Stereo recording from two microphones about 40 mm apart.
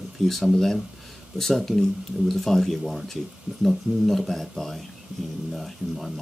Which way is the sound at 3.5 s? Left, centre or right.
Right.